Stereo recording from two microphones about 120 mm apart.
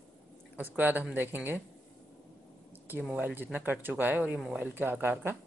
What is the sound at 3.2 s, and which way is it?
Speech, 15° right (ahead or behind).